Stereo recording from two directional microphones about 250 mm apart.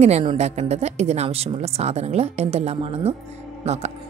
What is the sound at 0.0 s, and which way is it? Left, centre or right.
A woman's voice, right.